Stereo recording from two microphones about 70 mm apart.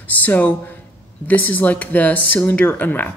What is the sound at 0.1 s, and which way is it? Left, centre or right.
A woman's voice, left.